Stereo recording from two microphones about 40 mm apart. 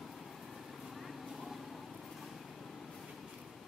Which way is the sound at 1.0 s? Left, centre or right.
Centre.